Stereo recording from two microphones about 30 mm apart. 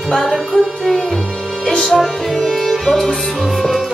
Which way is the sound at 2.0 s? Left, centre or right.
Centre.